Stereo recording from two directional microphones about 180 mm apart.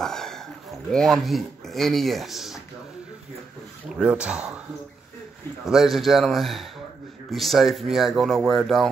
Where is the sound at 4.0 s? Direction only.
5° right (ahead or behind).